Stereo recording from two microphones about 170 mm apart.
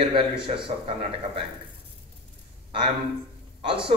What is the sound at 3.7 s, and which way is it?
Speech, 30° right (ahead or behind).